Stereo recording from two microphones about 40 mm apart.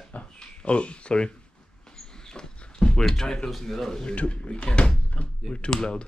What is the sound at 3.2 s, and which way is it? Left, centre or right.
Speech, centre.